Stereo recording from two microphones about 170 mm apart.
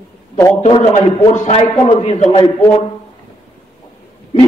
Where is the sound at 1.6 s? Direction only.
30° left (ahead or behind).